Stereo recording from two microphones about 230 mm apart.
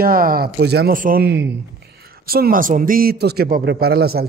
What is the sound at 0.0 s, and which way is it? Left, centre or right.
A man's voice, right.